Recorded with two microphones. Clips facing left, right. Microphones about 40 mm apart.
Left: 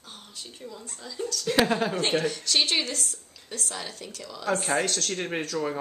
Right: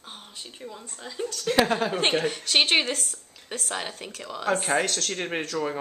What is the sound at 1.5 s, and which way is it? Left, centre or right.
Speech, centre.